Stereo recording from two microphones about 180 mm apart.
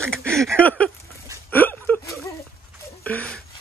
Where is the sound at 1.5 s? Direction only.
10° left (ahead or behind).